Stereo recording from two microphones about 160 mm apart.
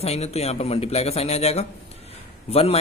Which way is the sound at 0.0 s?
40° left (ahead or behind).